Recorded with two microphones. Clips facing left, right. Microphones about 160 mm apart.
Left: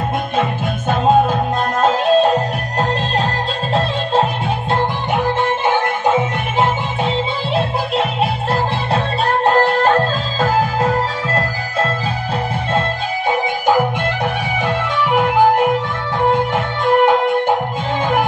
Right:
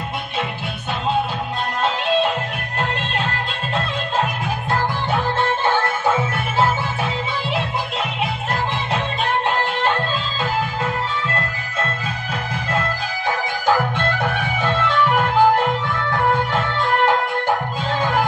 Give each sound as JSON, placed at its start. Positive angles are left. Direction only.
{"t": 0.4, "sound": "music", "side_deg": 45}
{"t": 5.7, "sound": "music", "side_deg": 20}
{"t": 8.9, "sound": "music", "side_deg": 40}
{"t": 13.7, "sound": "music", "side_deg": 20}